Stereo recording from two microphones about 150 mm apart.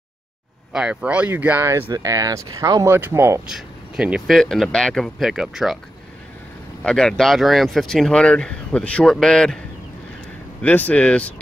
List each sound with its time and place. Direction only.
0.7 s speech: 5° right (ahead or behind)
3.4 s speech: 5° right (ahead or behind)
6.8 s speech: 5° left (ahead or behind)
10.6 s speech: 10° left (ahead or behind)